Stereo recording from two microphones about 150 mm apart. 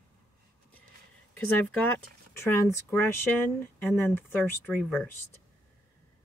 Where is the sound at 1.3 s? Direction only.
10° left (ahead or behind).